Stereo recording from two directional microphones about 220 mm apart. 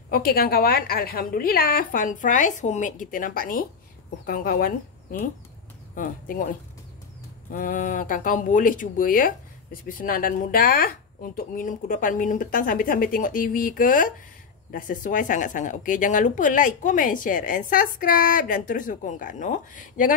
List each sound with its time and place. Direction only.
0.1 s speech: 45° left (ahead or behind)
5.9 s speech: 40° left (ahead or behind)
7.5 s speech: 40° left (ahead or behind)